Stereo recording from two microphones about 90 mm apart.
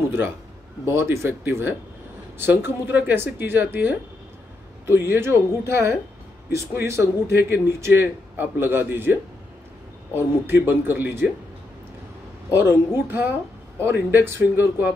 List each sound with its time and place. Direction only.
0.8 s a man's voice: 30° right (ahead or behind)
12.5 s a man's voice: 25° right (ahead or behind)